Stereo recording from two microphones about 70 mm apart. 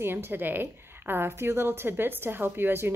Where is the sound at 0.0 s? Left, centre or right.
Right.